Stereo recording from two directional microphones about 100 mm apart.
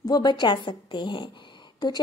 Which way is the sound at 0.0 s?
45° left (ahead or behind).